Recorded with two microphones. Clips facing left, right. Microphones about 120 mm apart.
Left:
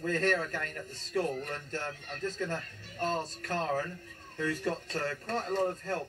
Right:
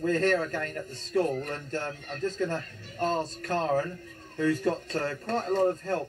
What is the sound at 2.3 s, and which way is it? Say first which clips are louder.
Speech: right 5 dB; 20° right (ahead or behind).